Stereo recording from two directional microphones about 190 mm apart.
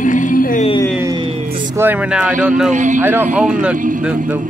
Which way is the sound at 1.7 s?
10° right (ahead or behind).